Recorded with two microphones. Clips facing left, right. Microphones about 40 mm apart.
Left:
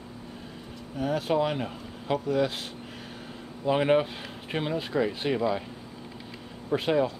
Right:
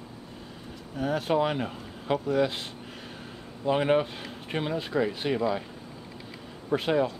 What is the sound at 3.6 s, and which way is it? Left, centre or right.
Speech, centre.